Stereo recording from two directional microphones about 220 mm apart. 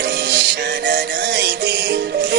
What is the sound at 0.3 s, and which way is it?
Music, 50° right (ahead or behind).